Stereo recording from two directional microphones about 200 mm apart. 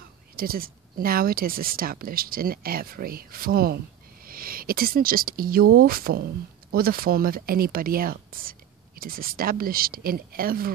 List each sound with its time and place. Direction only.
0.4 s speech: 45° right (ahead or behind)